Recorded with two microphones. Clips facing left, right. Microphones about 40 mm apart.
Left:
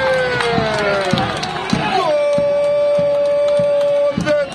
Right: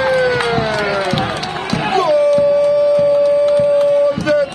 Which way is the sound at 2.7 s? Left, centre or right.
Left.